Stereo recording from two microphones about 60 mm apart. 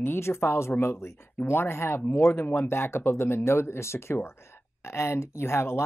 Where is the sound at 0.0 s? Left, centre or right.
Left.